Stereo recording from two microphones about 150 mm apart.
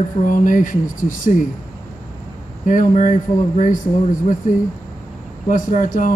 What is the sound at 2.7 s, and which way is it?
Speech, 60° left (ahead or behind).